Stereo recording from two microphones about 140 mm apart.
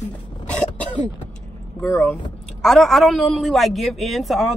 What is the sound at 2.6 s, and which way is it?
Speech, centre (ahead or behind).